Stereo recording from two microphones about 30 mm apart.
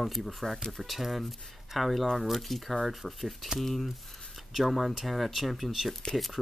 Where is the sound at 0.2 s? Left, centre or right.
Centre.